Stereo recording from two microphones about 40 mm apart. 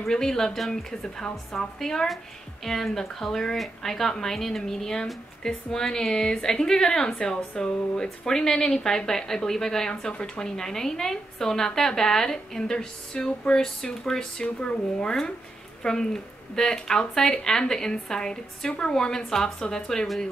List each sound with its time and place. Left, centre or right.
0.1 s speech: centre